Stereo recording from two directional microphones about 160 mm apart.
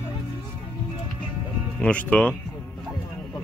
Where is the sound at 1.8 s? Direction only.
10° left (ahead or behind).